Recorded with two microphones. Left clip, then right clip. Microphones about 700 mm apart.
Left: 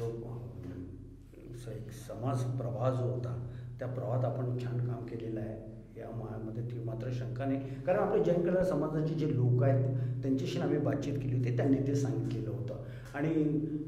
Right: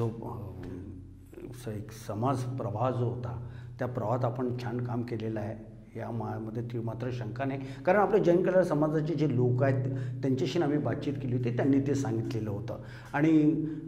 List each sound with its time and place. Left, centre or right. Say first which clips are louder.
2.0 s a man's voice: right 6 dB; right
6.5 s a man's voice: right 5 dB; right